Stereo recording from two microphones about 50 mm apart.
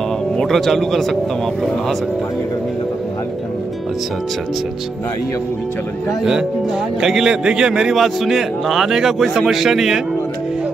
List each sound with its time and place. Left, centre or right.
0.4 s speech: centre
7.0 s a man's voice: centre
7.9 s speech: centre